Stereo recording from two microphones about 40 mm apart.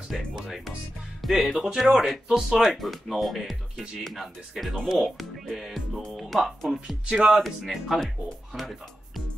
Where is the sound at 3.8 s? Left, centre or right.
Centre.